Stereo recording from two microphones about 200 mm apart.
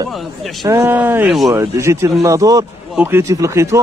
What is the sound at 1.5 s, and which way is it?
Speech, 15° right (ahead or behind).